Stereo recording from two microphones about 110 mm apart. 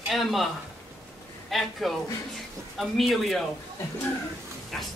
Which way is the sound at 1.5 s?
Centre (ahead or behind).